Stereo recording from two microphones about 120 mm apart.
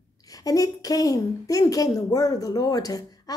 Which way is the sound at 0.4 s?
30° left (ahead or behind).